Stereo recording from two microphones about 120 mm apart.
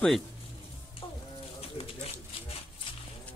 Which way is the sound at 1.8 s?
50° left (ahead or behind).